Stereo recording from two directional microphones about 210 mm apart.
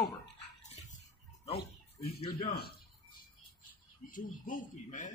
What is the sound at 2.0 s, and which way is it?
Speech, 30° left (ahead or behind).